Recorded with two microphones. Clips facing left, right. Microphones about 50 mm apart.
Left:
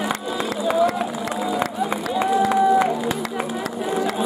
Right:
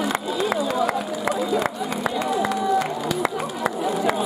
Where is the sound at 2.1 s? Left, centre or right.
Centre.